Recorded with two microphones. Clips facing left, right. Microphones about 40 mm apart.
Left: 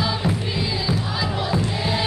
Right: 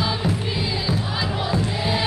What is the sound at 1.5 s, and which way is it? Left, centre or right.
Music, centre.